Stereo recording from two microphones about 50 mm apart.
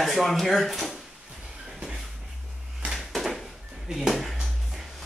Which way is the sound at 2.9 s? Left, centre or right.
Centre.